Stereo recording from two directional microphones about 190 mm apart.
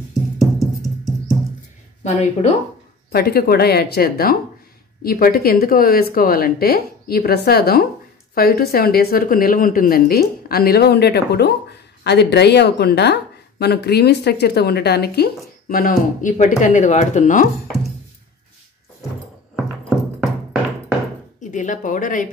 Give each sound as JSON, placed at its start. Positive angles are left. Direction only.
{"t": 0.4, "sound": "music", "side_deg": 0}
{"t": 3.1, "sound": "speech", "side_deg": 55}
{"t": 19.5, "sound": "music", "side_deg": 0}
{"t": 21.4, "sound": "speech", "side_deg": 40}